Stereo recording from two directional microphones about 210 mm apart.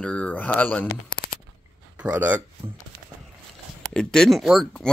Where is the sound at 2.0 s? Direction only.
5° right (ahead or behind).